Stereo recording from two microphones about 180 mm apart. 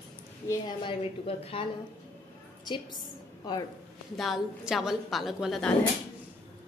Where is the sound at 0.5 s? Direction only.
25° left (ahead or behind).